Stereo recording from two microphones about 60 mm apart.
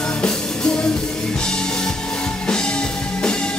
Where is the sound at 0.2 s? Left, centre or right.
Centre.